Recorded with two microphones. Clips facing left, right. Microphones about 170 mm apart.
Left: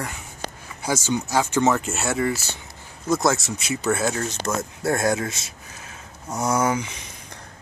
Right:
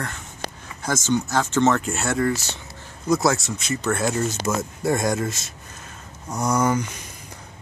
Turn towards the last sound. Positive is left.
turn(degrees=5)  # may be behind; listen again after turning